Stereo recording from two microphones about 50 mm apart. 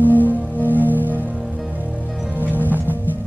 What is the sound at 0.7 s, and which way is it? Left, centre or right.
Music, right.